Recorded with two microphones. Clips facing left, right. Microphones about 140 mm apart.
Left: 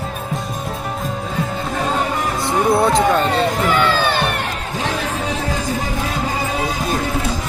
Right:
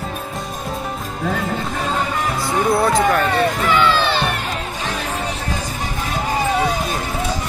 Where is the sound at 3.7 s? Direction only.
45° left (ahead or behind).